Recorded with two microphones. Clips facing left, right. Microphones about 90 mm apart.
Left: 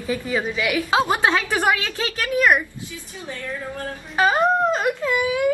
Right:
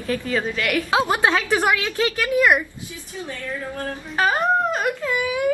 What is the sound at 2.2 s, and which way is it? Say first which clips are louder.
Speech: left 1 dB; 15° right (ahead or behind).